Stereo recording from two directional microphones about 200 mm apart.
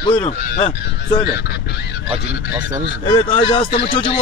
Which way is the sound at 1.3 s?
55° left (ahead or behind).